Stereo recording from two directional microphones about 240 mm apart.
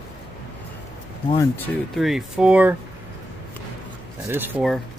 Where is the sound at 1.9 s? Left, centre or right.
Centre.